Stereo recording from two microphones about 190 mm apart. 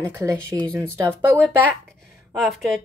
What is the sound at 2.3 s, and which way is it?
Speech, centre (ahead or behind).